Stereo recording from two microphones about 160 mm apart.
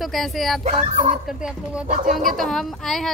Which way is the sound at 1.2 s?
5° right (ahead or behind).